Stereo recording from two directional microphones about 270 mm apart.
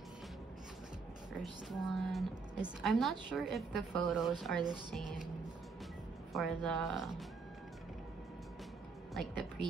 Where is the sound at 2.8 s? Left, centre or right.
Centre.